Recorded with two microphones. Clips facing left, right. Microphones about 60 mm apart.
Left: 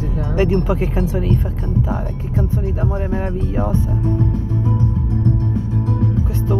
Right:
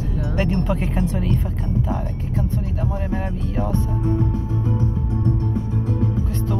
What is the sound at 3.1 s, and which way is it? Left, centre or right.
Speech, centre.